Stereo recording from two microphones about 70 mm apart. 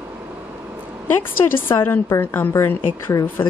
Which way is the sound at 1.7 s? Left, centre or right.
Left.